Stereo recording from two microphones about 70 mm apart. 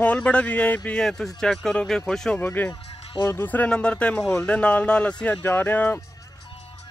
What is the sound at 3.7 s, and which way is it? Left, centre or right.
Speech, centre.